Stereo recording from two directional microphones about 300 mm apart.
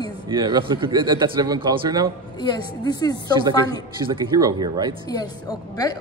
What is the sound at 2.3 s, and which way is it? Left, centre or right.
A woman's voice, centre.